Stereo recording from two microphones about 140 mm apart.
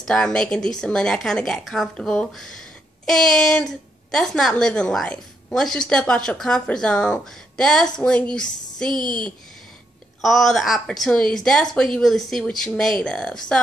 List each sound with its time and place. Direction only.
0.0 s a woman's voice: 5° left (ahead or behind)
8.9 s a woman's voice: 30° right (ahead or behind)
10.2 s a woman's voice: centre (ahead or behind)